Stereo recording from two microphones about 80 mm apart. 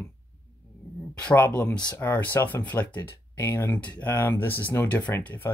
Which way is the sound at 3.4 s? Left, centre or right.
Left.